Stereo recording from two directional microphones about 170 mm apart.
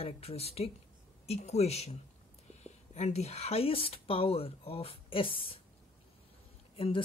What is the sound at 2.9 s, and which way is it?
Speech, 40° left (ahead or behind).